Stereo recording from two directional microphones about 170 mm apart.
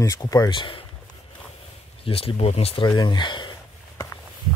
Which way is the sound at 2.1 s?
35° left (ahead or behind).